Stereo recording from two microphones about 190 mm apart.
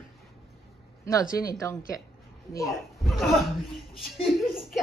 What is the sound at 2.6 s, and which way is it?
Speech, centre (ahead or behind).